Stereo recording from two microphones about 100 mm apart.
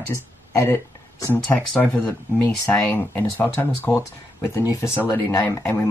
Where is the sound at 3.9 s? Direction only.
30° left (ahead or behind).